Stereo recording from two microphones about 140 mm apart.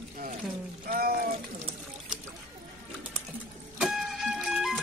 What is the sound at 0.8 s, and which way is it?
Speech, 90° right.